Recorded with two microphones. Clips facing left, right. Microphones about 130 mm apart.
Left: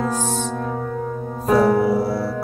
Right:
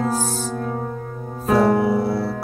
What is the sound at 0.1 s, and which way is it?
Music, 35° right (ahead or behind).